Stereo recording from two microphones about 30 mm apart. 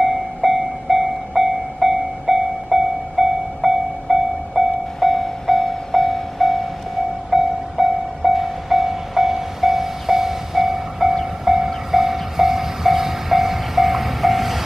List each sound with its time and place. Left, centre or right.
0.0 s train: centre
5.0 s train: centre
7.2 s train: centre